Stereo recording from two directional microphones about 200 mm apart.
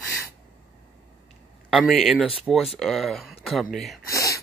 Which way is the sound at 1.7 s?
Centre (ahead or behind).